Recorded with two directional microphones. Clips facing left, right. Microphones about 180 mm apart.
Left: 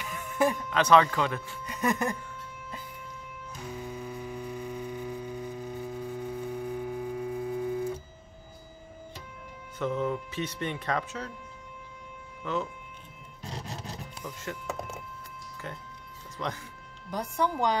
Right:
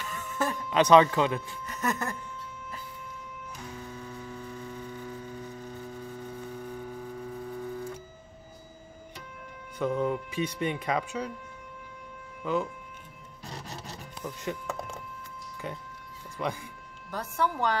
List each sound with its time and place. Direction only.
0.0 s music: 15° left (ahead or behind)
0.7 s speech: 15° right (ahead or behind)
1.7 s music: 15° left (ahead or behind)
3.7 s hum: 15° left (ahead or behind)
9.8 s speech: 15° right (ahead or behind)
12.4 s speech: 15° right (ahead or behind)
14.2 s speech: 15° right (ahead or behind)
15.6 s speech: 15° right (ahead or behind)
17.1 s a woman's voice: 15° left (ahead or behind)